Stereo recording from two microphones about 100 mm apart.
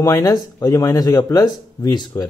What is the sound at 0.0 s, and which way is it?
A man's voice, 35° left (ahead or behind).